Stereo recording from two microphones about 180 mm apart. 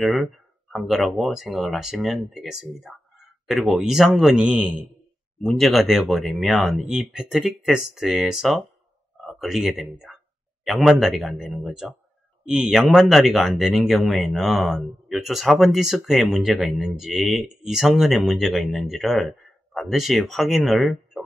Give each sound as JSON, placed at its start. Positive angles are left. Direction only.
{"t": 0.0, "sound": "speech", "side_deg": 0}